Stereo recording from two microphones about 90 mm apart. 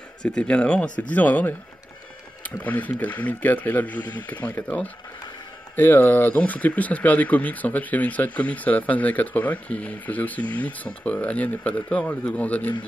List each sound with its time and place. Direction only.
0.2 s speech: 10° left (ahead or behind)